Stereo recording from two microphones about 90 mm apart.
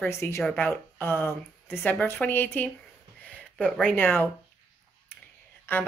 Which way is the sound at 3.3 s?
15° left (ahead or behind).